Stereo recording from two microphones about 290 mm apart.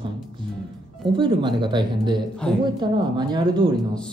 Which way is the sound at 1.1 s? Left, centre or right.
Centre.